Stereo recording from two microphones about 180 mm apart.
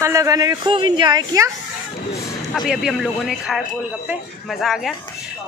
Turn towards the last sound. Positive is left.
turn(degrees=0)  # may be behind; listen again after turning